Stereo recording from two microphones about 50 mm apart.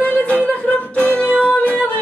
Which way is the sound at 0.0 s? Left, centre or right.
Left.